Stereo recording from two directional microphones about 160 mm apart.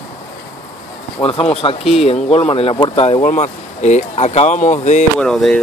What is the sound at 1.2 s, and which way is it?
Speech, 35° left (ahead or behind).